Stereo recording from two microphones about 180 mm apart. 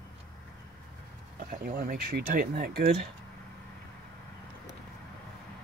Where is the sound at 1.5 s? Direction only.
50° right (ahead or behind).